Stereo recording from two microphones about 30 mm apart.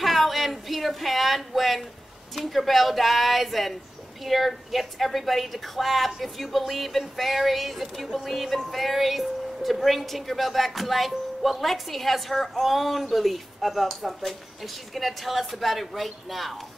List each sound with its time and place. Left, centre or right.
0.0 s a woman's voice: centre